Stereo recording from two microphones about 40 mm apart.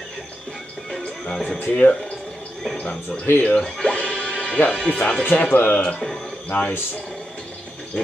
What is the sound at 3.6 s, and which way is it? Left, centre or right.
Music, left.